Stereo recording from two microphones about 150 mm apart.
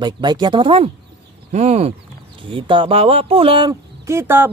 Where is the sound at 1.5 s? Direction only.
50° right (ahead or behind).